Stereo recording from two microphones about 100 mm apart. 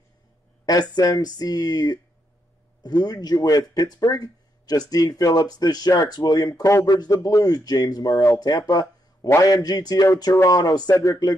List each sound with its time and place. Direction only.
0.7 s speech: 40° left (ahead or behind)